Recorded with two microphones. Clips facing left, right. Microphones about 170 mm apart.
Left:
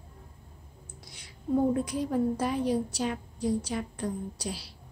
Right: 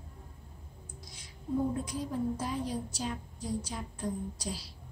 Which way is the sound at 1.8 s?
70° left (ahead or behind).